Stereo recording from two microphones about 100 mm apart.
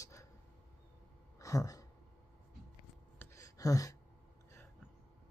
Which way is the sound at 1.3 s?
35° left (ahead or behind).